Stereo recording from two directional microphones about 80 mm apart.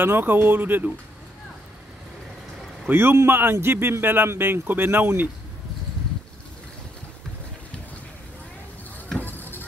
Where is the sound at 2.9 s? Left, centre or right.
Right.